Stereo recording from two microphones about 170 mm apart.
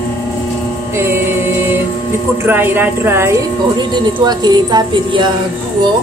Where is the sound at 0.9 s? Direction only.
15° right (ahead or behind).